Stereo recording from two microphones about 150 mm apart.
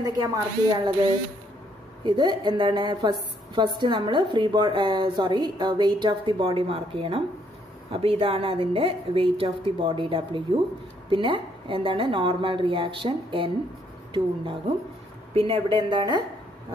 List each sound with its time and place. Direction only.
0.0 s speech: 25° right (ahead or behind)
2.0 s a woman's voice: 30° right (ahead or behind)